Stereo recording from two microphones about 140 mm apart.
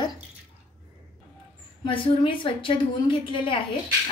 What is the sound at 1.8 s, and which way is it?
A woman's voice, 35° left (ahead or behind).